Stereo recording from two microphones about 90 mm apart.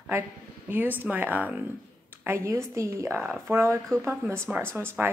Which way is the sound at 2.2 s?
30° right (ahead or behind).